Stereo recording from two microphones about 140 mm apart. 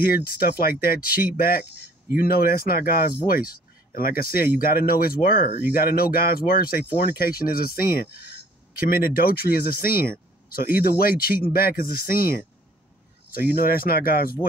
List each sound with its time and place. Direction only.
0.0 s speech: 90° left